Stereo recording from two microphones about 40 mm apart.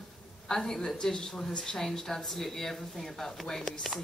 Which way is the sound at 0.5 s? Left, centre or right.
Centre.